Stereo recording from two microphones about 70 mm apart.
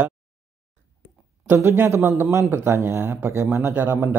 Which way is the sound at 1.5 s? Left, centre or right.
Right.